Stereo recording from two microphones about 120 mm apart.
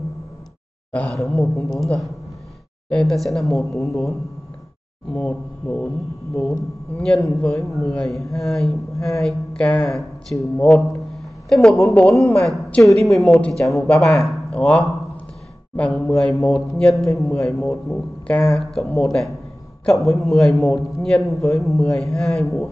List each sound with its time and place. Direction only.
0.9 s a man's voice: 10° left (ahead or behind)
5.1 s speech: 10° left (ahead or behind)
7.0 s a man's voice: 5° left (ahead or behind)
11.9 s a man's voice: 15° left (ahead or behind)